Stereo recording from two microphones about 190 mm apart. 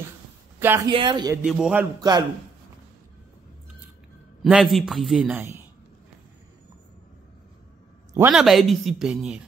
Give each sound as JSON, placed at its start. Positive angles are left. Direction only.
{"t": 0.6, "sound": "speech", "side_deg": -10}
{"t": 0.8, "sound": "speech", "side_deg": -25}
{"t": 1.4, "sound": "a man's voice", "side_deg": -5}
{"t": 2.0, "sound": "speech", "side_deg": -20}
{"t": 4.4, "sound": "a man's voice", "side_deg": 0}
{"t": 8.3, "sound": "a man's voice", "side_deg": 0}